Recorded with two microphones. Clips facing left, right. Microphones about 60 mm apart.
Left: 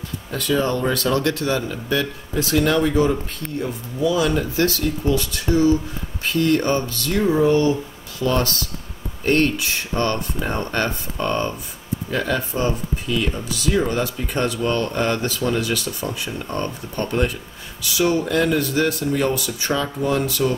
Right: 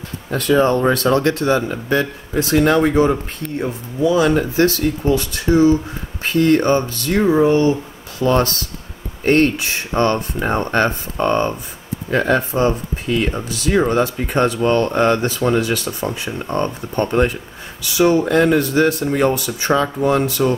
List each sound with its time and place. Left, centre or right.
0.3 s speech: right